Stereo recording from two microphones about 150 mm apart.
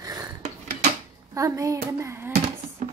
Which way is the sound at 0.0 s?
25° right (ahead or behind).